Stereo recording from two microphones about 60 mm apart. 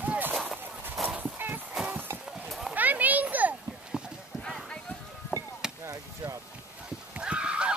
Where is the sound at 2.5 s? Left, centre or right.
Centre.